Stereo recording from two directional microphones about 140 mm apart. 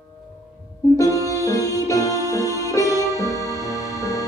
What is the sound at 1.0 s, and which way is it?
Music, 20° left (ahead or behind).